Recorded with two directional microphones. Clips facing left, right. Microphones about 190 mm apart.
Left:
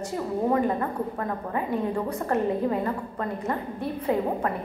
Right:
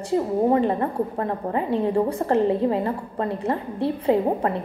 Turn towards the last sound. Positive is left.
turn(degrees=-30)  # may be behind; listen again after turning